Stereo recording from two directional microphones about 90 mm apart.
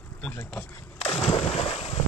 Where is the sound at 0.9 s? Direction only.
90° left.